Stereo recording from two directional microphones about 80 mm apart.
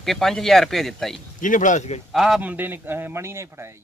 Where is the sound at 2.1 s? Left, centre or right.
Centre.